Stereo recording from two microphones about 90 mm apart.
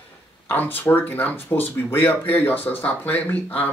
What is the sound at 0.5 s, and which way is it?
Speech, 20° left (ahead or behind).